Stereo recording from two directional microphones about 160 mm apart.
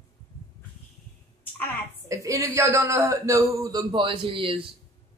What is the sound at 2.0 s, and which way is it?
A man's voice, 20° right (ahead or behind).